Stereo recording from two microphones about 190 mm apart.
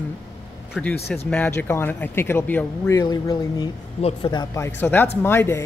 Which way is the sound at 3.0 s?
20° left (ahead or behind).